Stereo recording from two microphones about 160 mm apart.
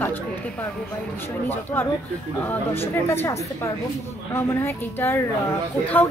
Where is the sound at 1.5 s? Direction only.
15° left (ahead or behind).